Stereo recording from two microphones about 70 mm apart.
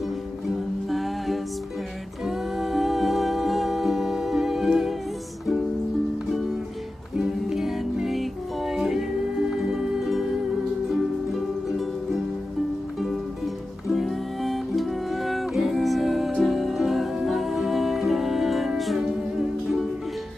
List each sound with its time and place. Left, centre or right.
0.8 s music: centre
7.2 s music: centre
13.8 s music: centre